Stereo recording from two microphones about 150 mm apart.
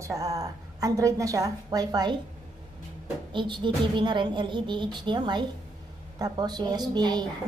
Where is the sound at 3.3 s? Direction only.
30° right (ahead or behind).